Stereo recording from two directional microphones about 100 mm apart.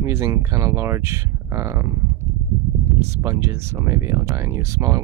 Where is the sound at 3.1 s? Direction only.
30° right (ahead or behind).